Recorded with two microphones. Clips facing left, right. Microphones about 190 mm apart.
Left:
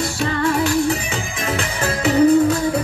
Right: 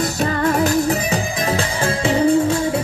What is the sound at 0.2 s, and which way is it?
Music, 40° right (ahead or behind).